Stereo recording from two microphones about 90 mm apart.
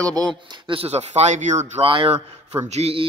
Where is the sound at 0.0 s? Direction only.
45° right (ahead or behind).